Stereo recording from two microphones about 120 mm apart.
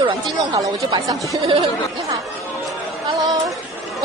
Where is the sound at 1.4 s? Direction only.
50° right (ahead or behind).